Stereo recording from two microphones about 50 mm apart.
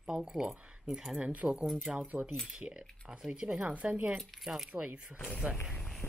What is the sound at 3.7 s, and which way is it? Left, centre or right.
Speech, right.